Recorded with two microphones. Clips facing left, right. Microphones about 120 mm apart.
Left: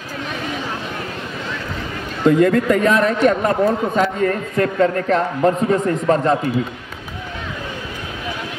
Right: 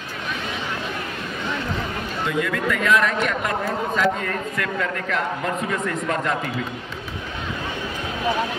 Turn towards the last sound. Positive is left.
turn(degrees=35)  # may be behind; listen again after turning